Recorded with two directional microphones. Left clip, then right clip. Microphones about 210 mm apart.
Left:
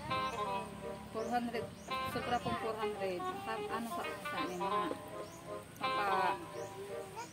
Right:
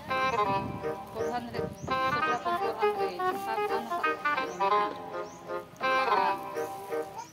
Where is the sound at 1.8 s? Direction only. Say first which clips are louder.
Right 12 dB; 20° right (ahead or behind).